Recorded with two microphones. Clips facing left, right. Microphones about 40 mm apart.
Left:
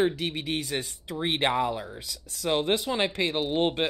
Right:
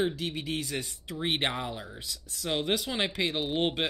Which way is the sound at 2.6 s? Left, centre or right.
Left.